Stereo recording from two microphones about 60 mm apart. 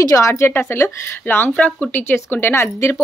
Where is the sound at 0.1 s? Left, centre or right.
Left.